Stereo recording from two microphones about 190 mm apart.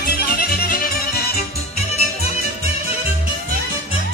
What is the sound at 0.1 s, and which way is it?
Music, 50° left (ahead or behind).